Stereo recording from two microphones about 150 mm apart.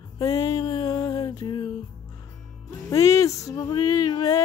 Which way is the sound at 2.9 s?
20° left (ahead or behind).